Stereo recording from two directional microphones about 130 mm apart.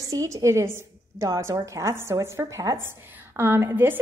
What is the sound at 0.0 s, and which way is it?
A woman's voice, 25° right (ahead or behind).